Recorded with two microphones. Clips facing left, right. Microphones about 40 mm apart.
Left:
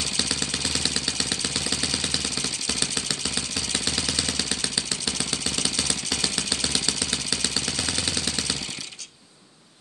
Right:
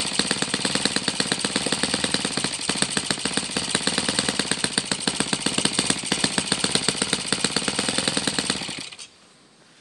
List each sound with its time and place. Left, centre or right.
0.2 s vehicle: right